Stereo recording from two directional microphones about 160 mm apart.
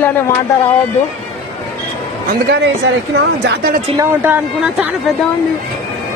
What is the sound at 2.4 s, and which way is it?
A woman's voice, 90° right.